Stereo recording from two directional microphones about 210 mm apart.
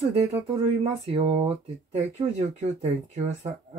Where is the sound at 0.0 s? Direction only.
30° right (ahead or behind).